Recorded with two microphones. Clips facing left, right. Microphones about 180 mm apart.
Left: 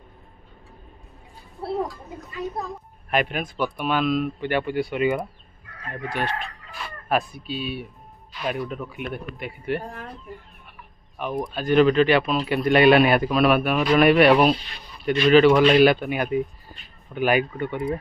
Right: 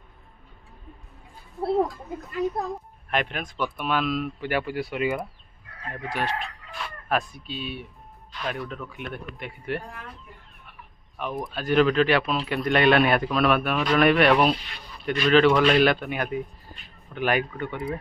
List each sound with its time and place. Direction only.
3.1 s speech: 10° left (ahead or behind)
9.8 s speech: 40° left (ahead or behind)
11.1 s speech: centre (ahead or behind)